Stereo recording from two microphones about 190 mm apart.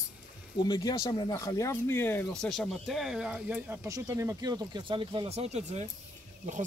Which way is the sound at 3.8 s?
15° right (ahead or behind).